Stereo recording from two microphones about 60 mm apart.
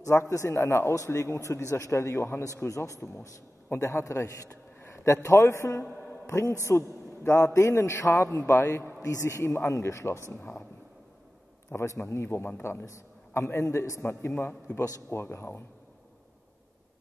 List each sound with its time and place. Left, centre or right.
0.0 s a man's voice: left
2.4 s a man's voice: left
11.7 s a man's voice: left
12.8 s a man's voice: left